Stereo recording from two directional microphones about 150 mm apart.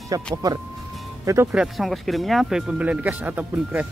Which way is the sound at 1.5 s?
Centre (ahead or behind).